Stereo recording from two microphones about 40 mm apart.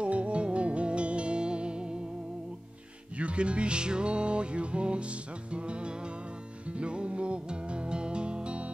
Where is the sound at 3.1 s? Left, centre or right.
Right.